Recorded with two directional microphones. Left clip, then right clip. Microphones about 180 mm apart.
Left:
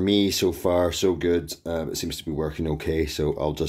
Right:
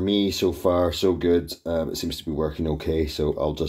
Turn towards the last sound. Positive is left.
turn(degrees=25)  # may be behind; listen again after turning